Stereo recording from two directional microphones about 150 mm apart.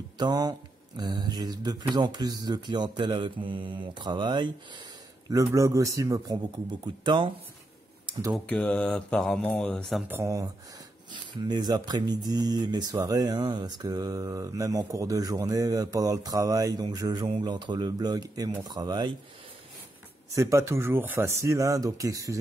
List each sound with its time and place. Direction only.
0.2 s speech: 25° right (ahead or behind)
8.5 s speech: 10° left (ahead or behind)
10.0 s speech: 20° right (ahead or behind)
20.3 s speech: 20° right (ahead or behind)